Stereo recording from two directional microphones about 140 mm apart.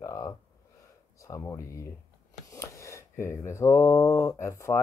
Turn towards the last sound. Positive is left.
turn(degrees=20)  # may be behind; listen again after turning